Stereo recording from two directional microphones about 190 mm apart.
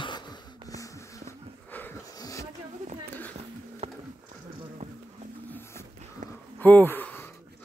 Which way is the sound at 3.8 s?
30° right (ahead or behind).